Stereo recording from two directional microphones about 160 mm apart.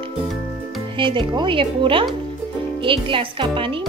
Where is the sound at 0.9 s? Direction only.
30° right (ahead or behind).